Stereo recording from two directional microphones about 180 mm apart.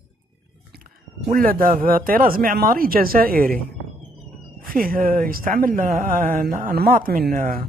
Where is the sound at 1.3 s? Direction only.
55° right (ahead or behind).